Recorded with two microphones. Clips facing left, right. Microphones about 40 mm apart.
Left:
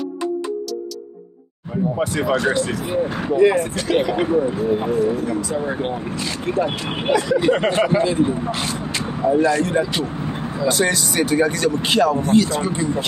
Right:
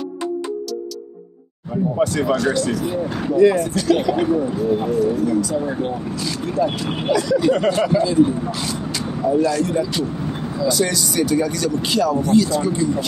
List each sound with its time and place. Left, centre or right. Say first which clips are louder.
2.3 s speech: even; left